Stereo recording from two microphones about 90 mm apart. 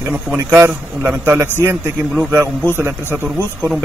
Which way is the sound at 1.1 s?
25° right (ahead or behind).